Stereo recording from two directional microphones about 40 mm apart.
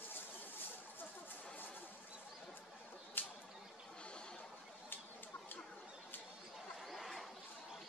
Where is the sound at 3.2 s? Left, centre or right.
Left.